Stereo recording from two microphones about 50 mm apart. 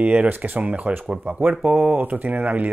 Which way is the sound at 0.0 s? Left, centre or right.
Right.